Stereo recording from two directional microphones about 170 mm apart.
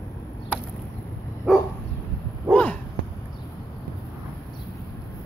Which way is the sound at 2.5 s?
10° left (ahead or behind).